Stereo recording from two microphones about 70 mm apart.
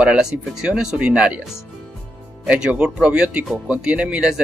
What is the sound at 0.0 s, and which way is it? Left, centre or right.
Speech, centre.